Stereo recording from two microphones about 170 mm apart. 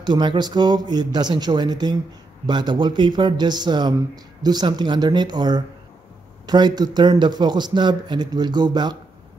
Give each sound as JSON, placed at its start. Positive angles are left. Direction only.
{"t": 0.0, "sound": "a man's voice", "side_deg": -25}